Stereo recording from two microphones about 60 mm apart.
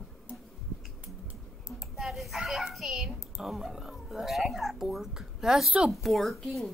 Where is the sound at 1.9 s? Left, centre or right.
Centre.